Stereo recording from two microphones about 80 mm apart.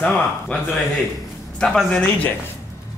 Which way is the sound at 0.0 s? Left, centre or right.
Centre.